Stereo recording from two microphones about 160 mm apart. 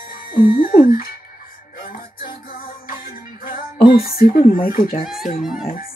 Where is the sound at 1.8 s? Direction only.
65° left (ahead or behind).